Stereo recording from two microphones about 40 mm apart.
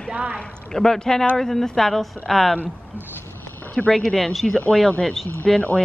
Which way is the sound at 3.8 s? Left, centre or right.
Left.